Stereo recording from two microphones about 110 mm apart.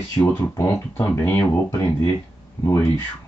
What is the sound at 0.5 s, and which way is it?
Speech, 30° left (ahead or behind).